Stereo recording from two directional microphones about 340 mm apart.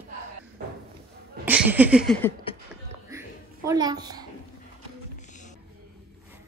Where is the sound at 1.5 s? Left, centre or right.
Centre.